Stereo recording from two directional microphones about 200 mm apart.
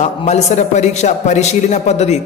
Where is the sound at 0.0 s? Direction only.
35° left (ahead or behind).